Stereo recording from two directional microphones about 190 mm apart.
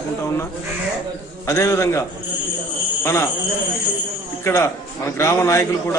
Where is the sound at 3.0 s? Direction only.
15° left (ahead or behind).